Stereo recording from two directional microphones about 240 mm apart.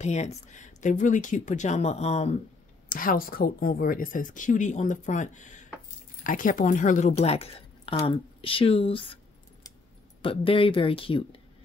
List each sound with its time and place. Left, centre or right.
0.0 s speech: left